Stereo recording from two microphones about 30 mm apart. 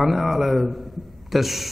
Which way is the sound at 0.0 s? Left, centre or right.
Centre.